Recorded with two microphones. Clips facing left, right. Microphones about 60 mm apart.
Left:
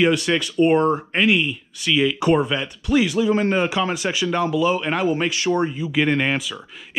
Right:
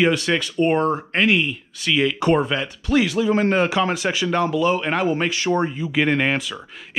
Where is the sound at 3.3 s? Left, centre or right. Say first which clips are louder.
Right 1 dB; right.